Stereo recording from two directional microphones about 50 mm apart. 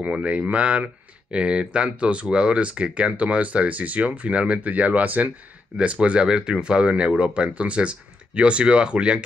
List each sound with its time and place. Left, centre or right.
0.1 s speech: right